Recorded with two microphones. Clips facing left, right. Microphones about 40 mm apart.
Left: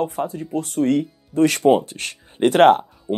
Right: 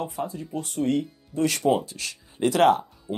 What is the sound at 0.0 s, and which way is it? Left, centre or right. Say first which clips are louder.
Speech: left 7 dB; left.